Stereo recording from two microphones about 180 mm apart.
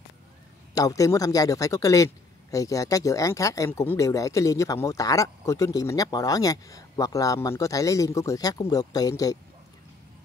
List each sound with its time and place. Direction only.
0.7 s a man's voice: 20° left (ahead or behind)